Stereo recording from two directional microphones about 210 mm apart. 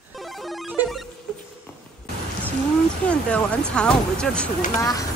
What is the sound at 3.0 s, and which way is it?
A man's voice, 5° left (ahead or behind).